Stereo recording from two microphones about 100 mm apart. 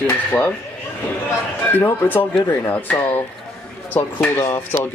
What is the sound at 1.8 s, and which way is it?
Speech, 20° left (ahead or behind).